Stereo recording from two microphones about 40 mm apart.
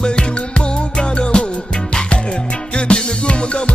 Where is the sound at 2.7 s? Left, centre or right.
Left.